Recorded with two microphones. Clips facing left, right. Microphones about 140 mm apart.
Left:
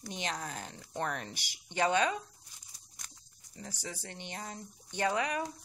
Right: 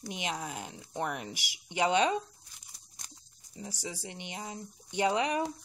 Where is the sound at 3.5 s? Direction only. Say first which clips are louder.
Right 3 dB; 15° right (ahead or behind).